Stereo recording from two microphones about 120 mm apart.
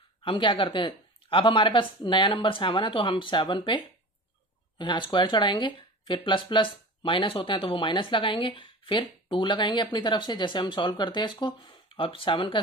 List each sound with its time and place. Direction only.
0.2 s speech: 45° left (ahead or behind)